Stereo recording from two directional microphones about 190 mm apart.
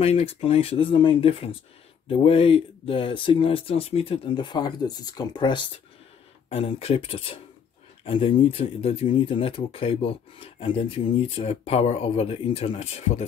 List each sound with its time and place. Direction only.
0.0 s speech: 30° left (ahead or behind)